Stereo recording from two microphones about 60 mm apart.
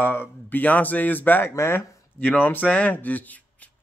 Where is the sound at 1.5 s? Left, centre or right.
Left.